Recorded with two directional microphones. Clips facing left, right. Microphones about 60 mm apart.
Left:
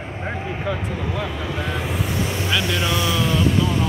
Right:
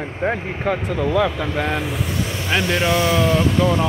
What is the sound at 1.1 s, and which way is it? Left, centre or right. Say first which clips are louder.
Speech: right 10 dB; right.